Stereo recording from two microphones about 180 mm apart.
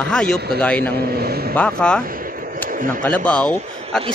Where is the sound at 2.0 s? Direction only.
50° right (ahead or behind).